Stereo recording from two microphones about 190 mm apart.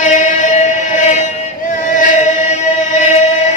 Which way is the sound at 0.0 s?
40° left (ahead or behind).